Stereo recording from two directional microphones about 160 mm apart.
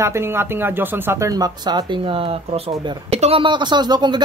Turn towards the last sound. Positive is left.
turn(degrees=-25)  # may be behind; listen again after turning